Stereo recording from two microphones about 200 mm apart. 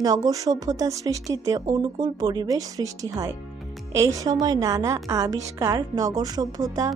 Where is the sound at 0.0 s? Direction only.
20° right (ahead or behind).